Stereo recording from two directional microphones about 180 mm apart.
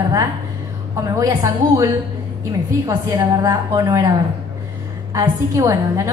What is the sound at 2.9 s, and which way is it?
A woman's voice, 20° right (ahead or behind).